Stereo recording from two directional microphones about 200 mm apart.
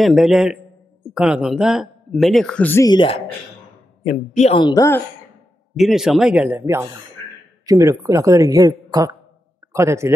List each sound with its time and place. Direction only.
0.0 s speech: centre (ahead or behind); by 3.2 s 20° left (ahead or behind)
4.0 s a man's voice: 35° left (ahead or behind); by 5.0 s 15° left (ahead or behind)
5.8 s speech: centre (ahead or behind)